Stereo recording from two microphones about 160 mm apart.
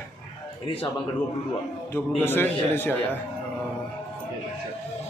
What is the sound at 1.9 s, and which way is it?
A man's voice, 15° left (ahead or behind).